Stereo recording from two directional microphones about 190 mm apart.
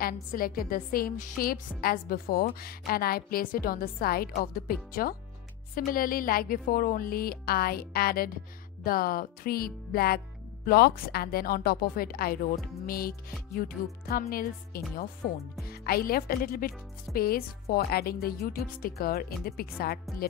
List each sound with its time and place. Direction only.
0.0 s speech: 50° left (ahead or behind)